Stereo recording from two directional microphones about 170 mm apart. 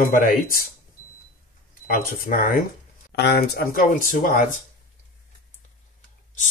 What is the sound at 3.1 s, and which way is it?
Speech, 75° left (ahead or behind).